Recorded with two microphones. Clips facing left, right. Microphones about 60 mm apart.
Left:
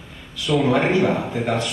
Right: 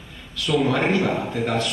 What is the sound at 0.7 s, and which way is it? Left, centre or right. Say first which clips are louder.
A man's voice: left 3 dB; centre.